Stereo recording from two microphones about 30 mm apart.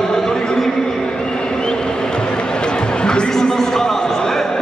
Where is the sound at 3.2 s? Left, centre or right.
Centre.